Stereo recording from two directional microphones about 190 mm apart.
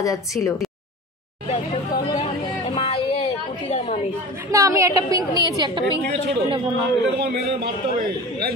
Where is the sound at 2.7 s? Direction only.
30° left (ahead or behind).